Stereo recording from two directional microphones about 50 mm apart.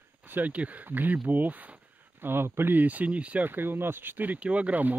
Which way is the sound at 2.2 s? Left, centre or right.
Right.